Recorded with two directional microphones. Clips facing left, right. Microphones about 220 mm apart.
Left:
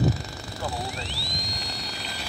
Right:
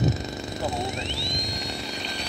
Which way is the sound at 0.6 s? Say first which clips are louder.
Right 3 dB; 20° right (ahead or behind).